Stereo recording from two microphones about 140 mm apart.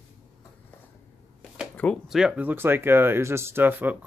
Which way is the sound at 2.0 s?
5° right (ahead or behind).